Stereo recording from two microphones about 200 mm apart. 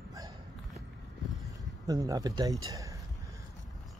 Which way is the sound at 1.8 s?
20° right (ahead or behind).